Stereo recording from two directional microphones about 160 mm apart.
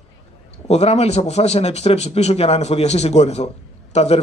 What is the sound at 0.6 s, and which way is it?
Speech, 40° left (ahead or behind).